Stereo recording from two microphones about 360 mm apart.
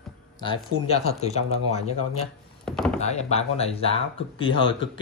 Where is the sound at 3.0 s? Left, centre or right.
Centre.